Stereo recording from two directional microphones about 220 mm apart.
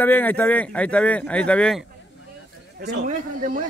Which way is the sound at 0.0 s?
10° left (ahead or behind).